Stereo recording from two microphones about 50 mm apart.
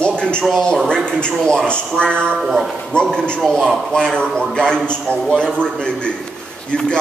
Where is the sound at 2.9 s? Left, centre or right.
Centre.